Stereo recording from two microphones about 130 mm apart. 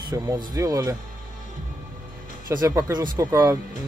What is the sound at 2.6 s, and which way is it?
Speech, 30° right (ahead or behind).